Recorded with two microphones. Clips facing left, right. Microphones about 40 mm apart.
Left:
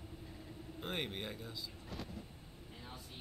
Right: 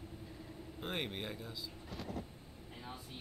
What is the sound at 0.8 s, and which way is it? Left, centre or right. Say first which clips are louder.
A man's voice: right 1 dB; centre.